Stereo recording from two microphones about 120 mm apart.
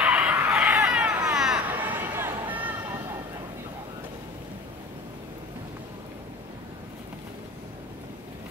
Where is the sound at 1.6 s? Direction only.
15° right (ahead or behind).